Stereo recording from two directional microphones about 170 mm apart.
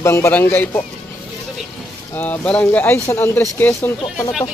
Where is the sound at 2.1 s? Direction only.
10° left (ahead or behind).